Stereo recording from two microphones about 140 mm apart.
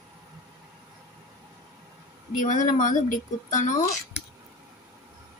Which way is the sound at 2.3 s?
65° left (ahead or behind).